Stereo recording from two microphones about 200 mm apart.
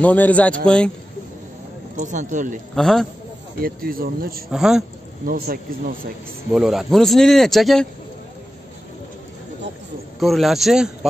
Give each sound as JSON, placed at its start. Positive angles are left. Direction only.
{"t": 0.0, "sound": "a man's voice", "side_deg": 5}
{"t": 2.0, "sound": "speech", "side_deg": -40}
{"t": 2.7, "sound": "speech", "side_deg": 0}
{"t": 3.5, "sound": "speech", "side_deg": -50}
{"t": 4.5, "sound": "speech", "side_deg": 0}
{"t": 5.2, "sound": "speech", "side_deg": -45}
{"t": 6.5, "sound": "speech", "side_deg": 0}
{"t": 10.2, "sound": "speech", "side_deg": 0}